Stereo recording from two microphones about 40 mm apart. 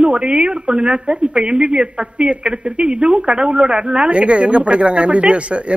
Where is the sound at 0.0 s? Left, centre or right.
Right.